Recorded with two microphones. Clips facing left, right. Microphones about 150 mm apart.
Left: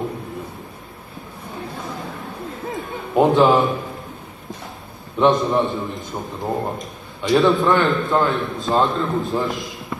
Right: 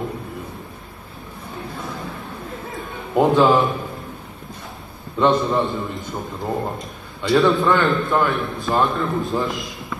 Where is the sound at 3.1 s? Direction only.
20° left (ahead or behind).